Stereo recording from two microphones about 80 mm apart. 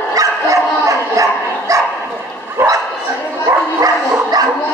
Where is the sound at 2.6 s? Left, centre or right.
Right.